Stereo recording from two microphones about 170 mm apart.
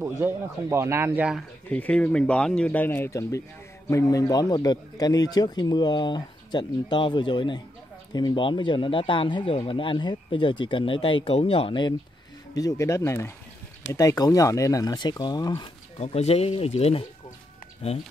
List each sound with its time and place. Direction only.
0.2 s speech: 15° right (ahead or behind)
1.7 s speech: 5° left (ahead or behind); by 11.9 s 30° left (ahead or behind)
12.5 s speech: 20° left (ahead or behind)
16.0 s speech: 40° left (ahead or behind)